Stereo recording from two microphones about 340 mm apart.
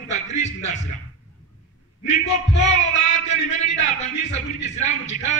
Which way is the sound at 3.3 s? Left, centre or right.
Left.